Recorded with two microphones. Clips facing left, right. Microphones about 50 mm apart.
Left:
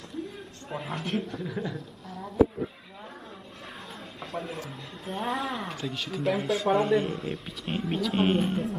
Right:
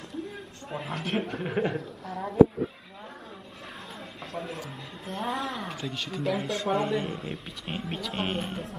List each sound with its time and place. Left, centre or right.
0.7 s speech: centre
1.1 s a woman's voice: right
4.2 s speech: centre